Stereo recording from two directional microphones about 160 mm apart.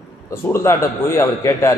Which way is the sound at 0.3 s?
15° left (ahead or behind).